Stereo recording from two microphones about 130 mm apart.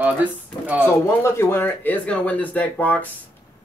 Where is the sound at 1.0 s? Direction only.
20° left (ahead or behind).